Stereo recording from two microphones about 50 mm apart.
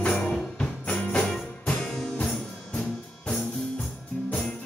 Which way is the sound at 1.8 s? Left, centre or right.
Centre.